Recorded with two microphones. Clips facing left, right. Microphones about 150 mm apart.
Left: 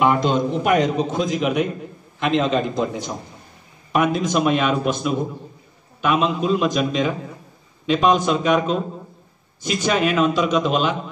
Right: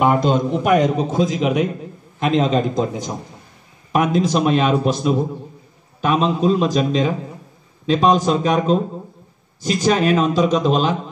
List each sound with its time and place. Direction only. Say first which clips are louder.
0.0 s a man's voice: right 2 dB; 45° right (ahead or behind)
1.1 s a man's voice: right 2 dB; 30° right (ahead or behind)
2.1 s a man's voice: right 2 dB; 40° right (ahead or behind)
3.9 s a man's voice: right 2 dB; 35° right (ahead or behind)